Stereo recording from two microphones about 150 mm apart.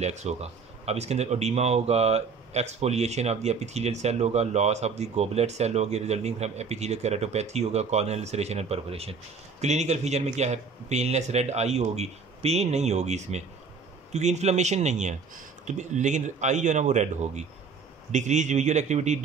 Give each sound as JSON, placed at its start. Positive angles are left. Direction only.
{"t": 0.0, "sound": "speech", "side_deg": -50}